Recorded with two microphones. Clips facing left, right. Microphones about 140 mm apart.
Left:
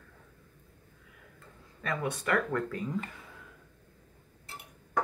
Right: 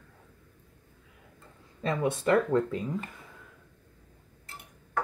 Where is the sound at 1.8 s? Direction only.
25° right (ahead or behind).